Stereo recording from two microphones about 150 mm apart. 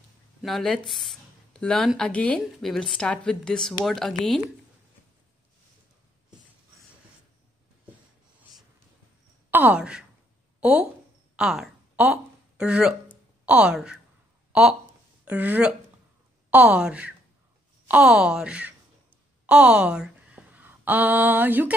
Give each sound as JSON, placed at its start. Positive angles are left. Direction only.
{"t": 0.4, "sound": "a woman's voice", "side_deg": 0}
{"t": 9.5, "sound": "speech", "side_deg": -10}
{"t": 11.3, "sound": "a sound", "side_deg": -5}
{"t": 13.5, "sound": "a woman's voice", "side_deg": -5}